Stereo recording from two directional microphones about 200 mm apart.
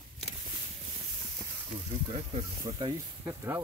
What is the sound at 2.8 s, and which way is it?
Speech, 20° right (ahead or behind).